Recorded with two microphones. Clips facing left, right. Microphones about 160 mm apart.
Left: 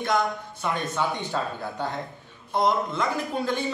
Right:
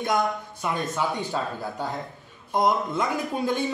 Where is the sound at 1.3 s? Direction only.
Centre (ahead or behind).